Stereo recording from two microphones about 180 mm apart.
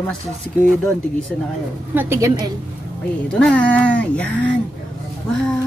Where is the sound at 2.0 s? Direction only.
15° right (ahead or behind).